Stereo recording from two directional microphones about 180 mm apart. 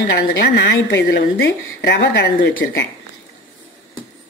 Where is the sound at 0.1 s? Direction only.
70° left (ahead or behind).